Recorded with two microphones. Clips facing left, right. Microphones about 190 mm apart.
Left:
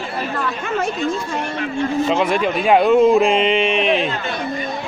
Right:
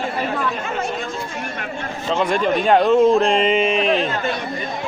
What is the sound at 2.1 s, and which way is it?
A man's voice, 10° left (ahead or behind).